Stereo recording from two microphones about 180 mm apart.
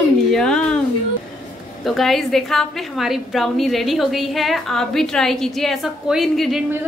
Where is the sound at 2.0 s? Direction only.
Centre (ahead or behind).